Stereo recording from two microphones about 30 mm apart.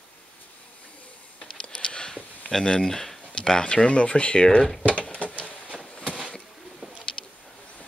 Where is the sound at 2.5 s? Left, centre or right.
Left.